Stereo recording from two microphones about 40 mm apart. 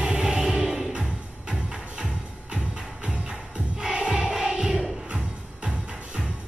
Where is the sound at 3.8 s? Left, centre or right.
Centre.